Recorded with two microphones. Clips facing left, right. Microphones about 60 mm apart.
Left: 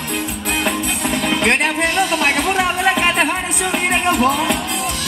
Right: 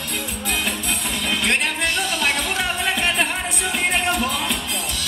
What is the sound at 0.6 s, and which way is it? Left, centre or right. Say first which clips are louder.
Music: left 6 dB; left.